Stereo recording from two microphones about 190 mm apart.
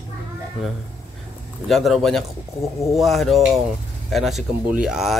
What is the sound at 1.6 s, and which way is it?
Speech, centre (ahead or behind).